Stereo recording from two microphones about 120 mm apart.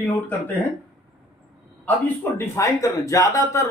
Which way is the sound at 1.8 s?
20° left (ahead or behind).